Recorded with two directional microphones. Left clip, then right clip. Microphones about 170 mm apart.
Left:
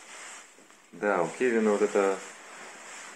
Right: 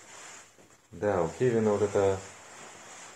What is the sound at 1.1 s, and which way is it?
Speech, 30° left (ahead or behind).